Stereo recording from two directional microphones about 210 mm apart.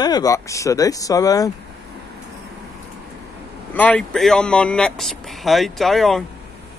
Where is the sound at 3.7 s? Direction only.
5° left (ahead or behind).